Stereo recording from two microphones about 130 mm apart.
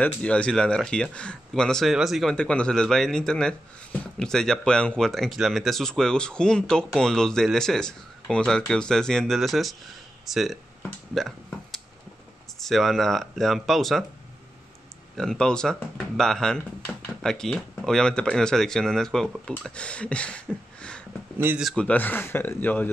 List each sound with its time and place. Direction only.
0.0 s speech: 10° left (ahead or behind)
11.1 s a sound: centre (ahead or behind)
12.5 s speech: centre (ahead or behind)
15.1 s speech: 5° left (ahead or behind)